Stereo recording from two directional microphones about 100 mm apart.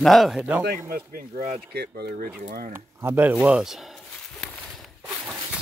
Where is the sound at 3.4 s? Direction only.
5° right (ahead or behind).